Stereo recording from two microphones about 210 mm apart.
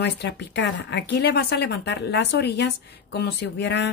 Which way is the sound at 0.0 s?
55° left (ahead or behind).